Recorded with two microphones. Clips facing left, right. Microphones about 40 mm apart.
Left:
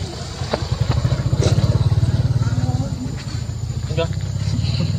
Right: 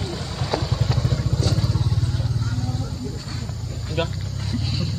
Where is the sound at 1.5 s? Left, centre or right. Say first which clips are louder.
Left 4 dB; left.